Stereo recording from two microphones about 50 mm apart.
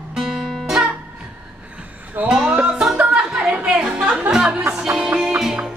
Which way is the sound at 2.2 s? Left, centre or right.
Right.